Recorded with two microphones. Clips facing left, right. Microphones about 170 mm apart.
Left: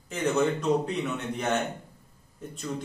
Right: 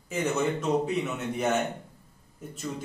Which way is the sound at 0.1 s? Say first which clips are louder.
Left 2 dB; 5° right (ahead or behind).